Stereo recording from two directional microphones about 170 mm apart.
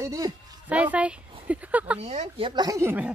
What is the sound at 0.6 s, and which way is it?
Wind chime, 10° right (ahead or behind).